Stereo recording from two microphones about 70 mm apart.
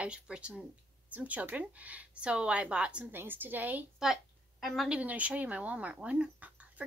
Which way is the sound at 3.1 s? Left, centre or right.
Right.